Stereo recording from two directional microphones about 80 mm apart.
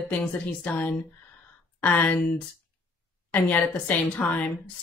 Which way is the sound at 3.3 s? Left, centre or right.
Centre.